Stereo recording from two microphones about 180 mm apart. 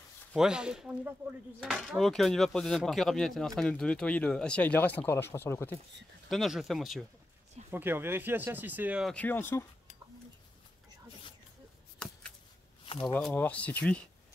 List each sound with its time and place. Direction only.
0.3 s speech: 5° right (ahead or behind); by 5.8 s 15° left (ahead or behind)
6.2 s speech: centre (ahead or behind)
7.7 s speech: 10° right (ahead or behind)
9.1 s speech: 10° left (ahead or behind)
13.0 s speech: 10° left (ahead or behind)